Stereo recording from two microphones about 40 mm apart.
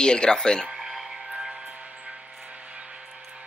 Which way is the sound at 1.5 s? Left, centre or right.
Right.